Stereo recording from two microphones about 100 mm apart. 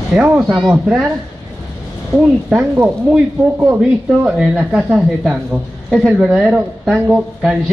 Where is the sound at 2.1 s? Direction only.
10° right (ahead or behind).